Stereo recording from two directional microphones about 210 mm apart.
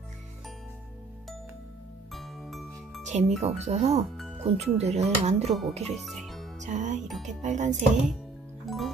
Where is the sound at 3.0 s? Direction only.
35° right (ahead or behind).